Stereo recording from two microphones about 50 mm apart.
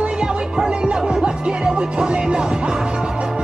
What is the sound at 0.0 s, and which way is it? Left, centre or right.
Music, centre.